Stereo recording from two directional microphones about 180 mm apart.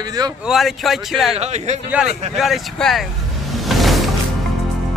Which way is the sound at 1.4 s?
35° right (ahead or behind).